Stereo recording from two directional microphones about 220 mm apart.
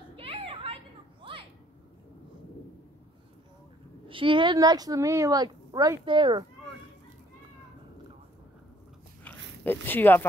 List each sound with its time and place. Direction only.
0.1 s children playing: 25° right (ahead or behind)
1.2 s a sound: 25° right (ahead or behind)
4.1 s speech: 20° right (ahead or behind)
9.7 s speech: 10° left (ahead or behind)